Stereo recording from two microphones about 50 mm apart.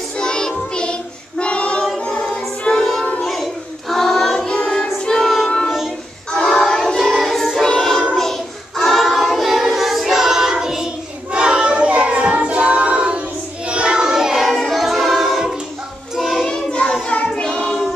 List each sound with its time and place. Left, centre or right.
0.2 s child singing: centre
2.0 s a capella: left
2.8 s child singing: centre
3.2 s singing: centre
3.9 s child singing: centre
4.6 s music: centre
6.3 s music: centre
8.2 s choir: centre
11.3 s child singing: right
16.4 s child singing: centre